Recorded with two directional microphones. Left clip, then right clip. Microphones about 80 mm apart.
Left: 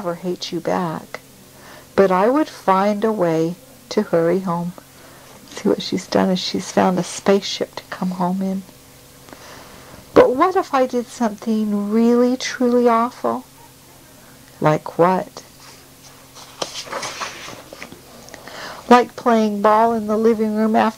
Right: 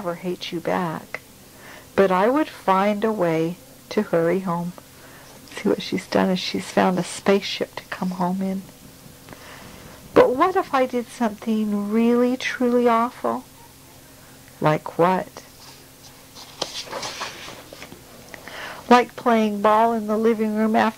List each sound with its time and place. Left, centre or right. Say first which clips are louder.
0.2 s a woman's voice: left 3 dB; left
4.0 s speech: left 3 dB; left
5.8 s a woman's voice: left 3 dB; left
8.0 s speech: left 3 dB; left
10.1 s a woman's voice: left 3 dB; left
12.0 s a woman's voice: left 3 dB; left
14.6 s a woman's voice: left 3 dB; left
16.3 s a sound: left 2 dB; centre
18.5 s a sound: left 2 dB; left
18.9 s a woman's voice: left 3 dB; left